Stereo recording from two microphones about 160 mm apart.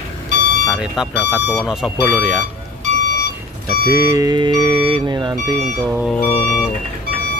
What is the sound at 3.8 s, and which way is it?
Speech, 20° right (ahead or behind).